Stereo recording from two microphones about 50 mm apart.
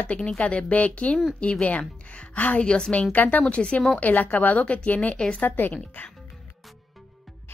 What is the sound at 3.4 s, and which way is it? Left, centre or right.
Speech, centre.